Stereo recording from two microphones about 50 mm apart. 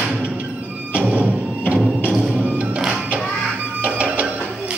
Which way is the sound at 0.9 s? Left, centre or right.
Right.